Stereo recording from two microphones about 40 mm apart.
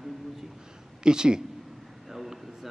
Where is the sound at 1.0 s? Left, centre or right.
Centre.